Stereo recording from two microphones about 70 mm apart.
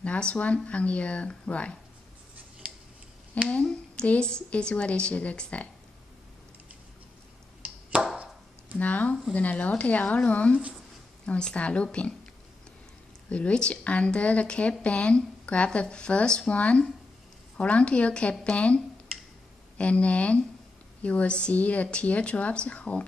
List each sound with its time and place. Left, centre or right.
0.0 s speech: centre
3.6 s speech: centre
7.6 s a sound: centre
8.7 s speech: centre
13.3 s speech: centre
19.8 s speech: centre